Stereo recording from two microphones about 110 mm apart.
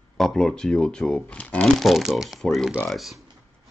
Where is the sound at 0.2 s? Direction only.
5° left (ahead or behind).